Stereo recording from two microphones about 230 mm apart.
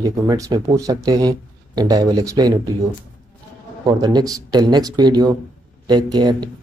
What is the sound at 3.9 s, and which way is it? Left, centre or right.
Speech, centre.